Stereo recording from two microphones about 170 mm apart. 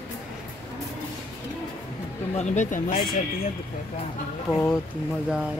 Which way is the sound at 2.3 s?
45° left (ahead or behind).